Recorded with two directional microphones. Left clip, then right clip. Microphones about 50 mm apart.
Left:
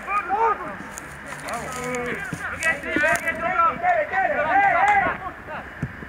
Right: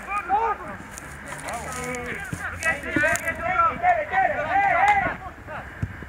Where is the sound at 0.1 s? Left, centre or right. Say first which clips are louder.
Left 4 dB; right.